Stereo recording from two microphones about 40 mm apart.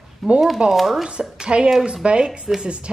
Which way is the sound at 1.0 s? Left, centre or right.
Centre.